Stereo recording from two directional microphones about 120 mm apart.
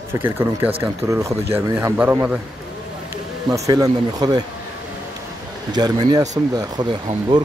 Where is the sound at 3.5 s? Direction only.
30° right (ahead or behind).